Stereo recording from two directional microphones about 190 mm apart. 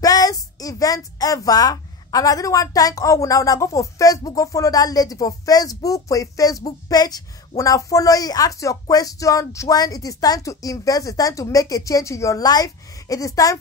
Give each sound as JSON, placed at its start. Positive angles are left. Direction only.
{"t": 0.0, "sound": "speech", "side_deg": 20}